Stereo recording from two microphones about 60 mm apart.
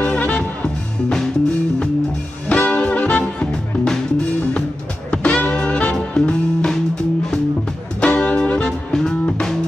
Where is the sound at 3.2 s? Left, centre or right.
Centre.